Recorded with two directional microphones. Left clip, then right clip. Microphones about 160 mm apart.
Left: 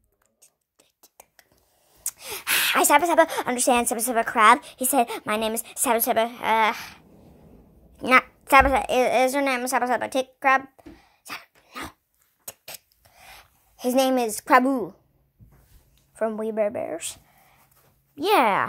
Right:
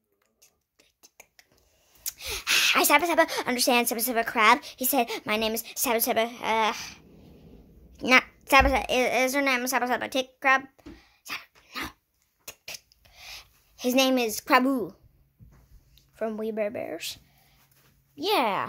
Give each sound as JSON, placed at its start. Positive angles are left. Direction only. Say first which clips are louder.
{"t": 0.4, "sound": "whispering", "louder": "left 1 dB", "side_deg": 15}
{"t": 2.0, "sound": "a woman's voice", "louder": "even", "side_deg": 5}
{"t": 12.4, "sound": "a sound", "louder": "right 1 dB", "side_deg": 10}
{"t": 13.1, "sound": "a sound", "louder": "right 3 dB", "side_deg": -10}
{"t": 13.7, "sound": "a woman's voice", "louder": "left 2 dB", "side_deg": 5}
{"t": 18.1, "sound": "speech", "louder": "left 5 dB", "side_deg": 20}